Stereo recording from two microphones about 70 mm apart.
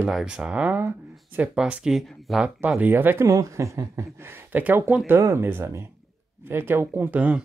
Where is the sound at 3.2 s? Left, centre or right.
Right.